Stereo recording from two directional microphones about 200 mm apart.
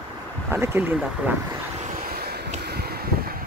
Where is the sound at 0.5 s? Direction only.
10° right (ahead or behind).